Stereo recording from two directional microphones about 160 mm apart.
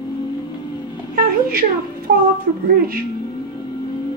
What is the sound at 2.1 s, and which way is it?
Speech, 90° right.